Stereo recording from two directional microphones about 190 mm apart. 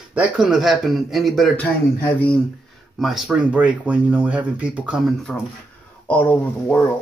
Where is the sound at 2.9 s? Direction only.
Centre (ahead or behind).